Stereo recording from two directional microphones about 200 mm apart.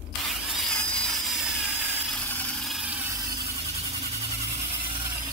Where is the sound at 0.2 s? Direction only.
Centre (ahead or behind).